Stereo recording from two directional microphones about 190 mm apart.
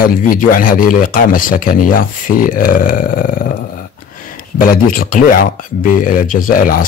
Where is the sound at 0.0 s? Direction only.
50° left (ahead or behind).